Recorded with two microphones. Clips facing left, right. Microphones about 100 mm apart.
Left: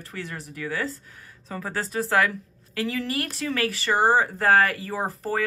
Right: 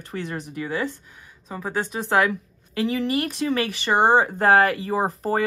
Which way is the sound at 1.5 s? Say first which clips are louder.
Right 2 dB; 10° right (ahead or behind).